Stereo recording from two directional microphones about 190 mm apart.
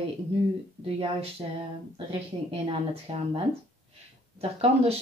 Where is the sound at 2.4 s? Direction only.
30° right (ahead or behind).